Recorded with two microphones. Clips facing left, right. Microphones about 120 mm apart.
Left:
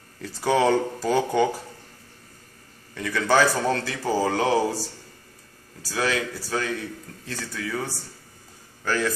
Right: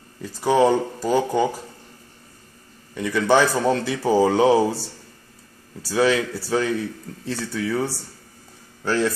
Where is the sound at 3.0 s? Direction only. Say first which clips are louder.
Right 3 dB; 20° right (ahead or behind).